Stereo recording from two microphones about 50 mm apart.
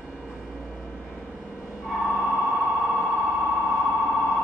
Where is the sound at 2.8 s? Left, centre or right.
Centre.